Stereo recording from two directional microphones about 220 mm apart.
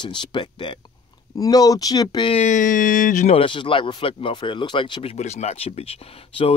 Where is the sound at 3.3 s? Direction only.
25° left (ahead or behind).